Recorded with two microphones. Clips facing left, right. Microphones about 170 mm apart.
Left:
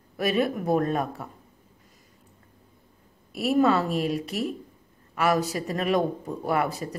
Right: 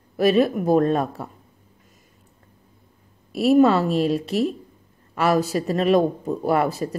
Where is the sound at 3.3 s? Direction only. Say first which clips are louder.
Right 6 dB; 25° right (ahead or behind).